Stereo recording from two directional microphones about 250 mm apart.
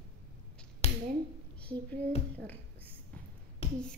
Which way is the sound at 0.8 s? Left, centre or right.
Left.